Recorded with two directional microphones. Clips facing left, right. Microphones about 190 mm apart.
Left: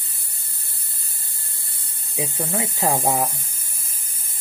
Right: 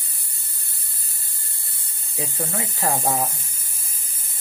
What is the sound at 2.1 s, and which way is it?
Speech, 20° left (ahead or behind).